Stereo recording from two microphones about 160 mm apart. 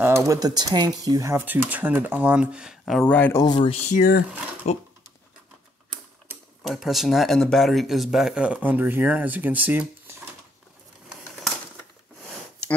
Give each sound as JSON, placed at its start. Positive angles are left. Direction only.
{"t": 0.3, "sound": "speech", "side_deg": -25}
{"t": 3.4, "sound": "speech", "side_deg": 30}
{"t": 3.9, "sound": "speech", "side_deg": 65}
{"t": 4.6, "sound": "speech", "side_deg": 45}
{"t": 6.6, "sound": "speech", "side_deg": 0}